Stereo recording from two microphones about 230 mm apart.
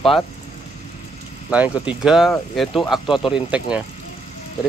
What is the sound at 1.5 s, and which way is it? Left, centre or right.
Speech, centre.